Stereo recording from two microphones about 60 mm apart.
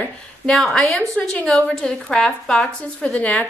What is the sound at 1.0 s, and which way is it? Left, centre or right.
Speech, left.